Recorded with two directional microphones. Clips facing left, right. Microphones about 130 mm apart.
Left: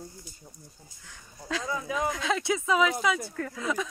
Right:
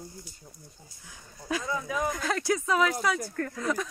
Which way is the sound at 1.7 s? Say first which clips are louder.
Left 2 dB; 25° left (ahead or behind).